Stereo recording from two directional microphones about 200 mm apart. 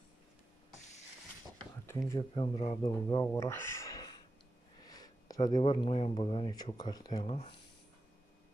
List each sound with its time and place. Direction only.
2.1 s speech: 25° left (ahead or behind)